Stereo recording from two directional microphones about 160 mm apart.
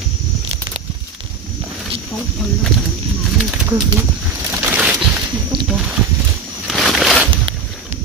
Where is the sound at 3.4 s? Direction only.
5° right (ahead or behind).